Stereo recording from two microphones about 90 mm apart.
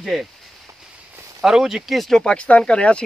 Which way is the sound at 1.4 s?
5° right (ahead or behind).